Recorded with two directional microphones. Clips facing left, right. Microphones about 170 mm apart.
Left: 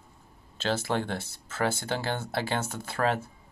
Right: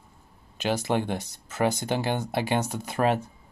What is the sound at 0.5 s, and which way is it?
Speech, 15° right (ahead or behind).